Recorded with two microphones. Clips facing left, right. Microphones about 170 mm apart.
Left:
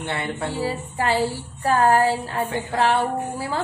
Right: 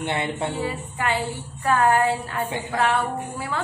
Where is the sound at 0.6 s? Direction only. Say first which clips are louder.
Left 2 dB; 35° left (ahead or behind).